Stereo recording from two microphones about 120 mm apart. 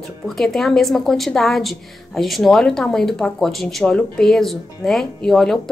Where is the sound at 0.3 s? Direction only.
Centre (ahead or behind).